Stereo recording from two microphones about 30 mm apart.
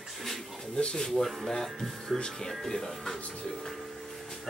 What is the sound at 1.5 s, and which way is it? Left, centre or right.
Speech, centre.